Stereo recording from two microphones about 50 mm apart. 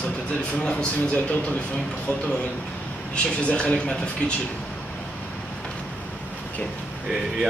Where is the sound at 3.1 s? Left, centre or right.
Left.